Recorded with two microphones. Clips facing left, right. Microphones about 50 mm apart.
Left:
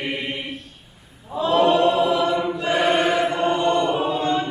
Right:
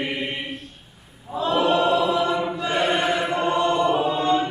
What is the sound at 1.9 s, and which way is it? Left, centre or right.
Chant, left.